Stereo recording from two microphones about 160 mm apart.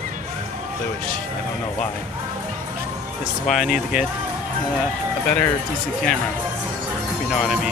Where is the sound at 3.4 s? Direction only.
Centre (ahead or behind).